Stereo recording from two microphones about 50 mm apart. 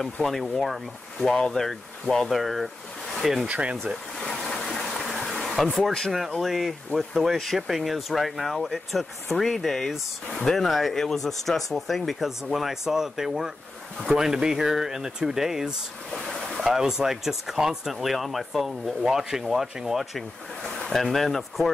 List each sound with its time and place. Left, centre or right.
0.0 s speech: centre
3.4 s speech: right
4.3 s water: centre
5.0 s insect: centre
5.6 s speech: centre
10.7 s speech: centre